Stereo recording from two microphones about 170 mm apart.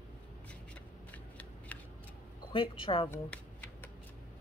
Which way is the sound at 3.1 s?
10° left (ahead or behind).